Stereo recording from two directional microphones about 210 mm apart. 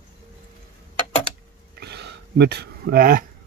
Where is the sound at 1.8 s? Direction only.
50° right (ahead or behind).